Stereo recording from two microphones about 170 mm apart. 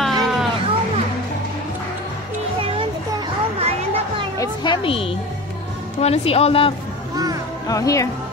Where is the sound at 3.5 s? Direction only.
35° right (ahead or behind).